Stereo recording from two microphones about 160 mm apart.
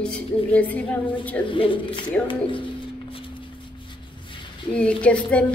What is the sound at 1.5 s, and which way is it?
Speech, 30° left (ahead or behind).